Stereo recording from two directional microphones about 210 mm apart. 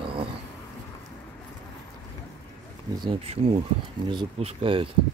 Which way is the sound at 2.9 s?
25° right (ahead or behind).